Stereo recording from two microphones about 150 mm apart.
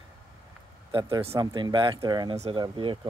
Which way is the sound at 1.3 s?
30° right (ahead or behind).